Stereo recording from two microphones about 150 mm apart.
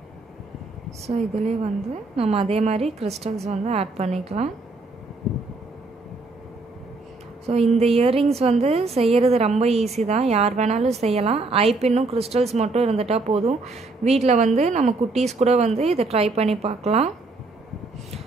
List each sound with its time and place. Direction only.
1.0 s a woman's voice: 45° right (ahead or behind)
7.4 s a woman's voice: 45° right (ahead or behind)